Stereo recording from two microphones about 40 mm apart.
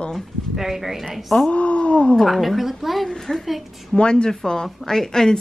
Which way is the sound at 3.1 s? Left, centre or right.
Centre.